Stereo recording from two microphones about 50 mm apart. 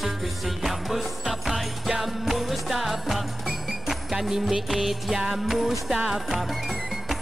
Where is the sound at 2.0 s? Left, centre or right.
Centre.